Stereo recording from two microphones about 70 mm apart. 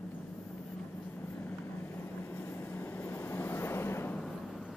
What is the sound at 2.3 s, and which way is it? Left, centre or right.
Vehicle, left.